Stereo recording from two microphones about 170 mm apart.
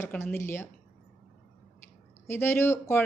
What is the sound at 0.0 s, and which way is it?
Speech, 15° left (ahead or behind).